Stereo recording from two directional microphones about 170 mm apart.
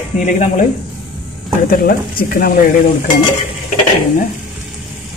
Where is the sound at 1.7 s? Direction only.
55° left (ahead or behind).